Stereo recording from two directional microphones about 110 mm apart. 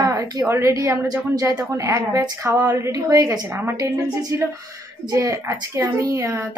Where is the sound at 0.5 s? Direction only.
25° right (ahead or behind).